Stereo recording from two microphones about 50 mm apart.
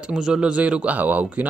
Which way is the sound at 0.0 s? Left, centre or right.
Centre.